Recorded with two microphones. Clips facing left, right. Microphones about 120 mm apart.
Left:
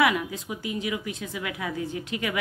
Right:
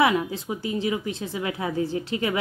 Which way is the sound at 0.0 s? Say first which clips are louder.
Right 2 dB; 30° right (ahead or behind).